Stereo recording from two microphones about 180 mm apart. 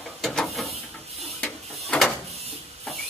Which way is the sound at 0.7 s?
35° right (ahead or behind).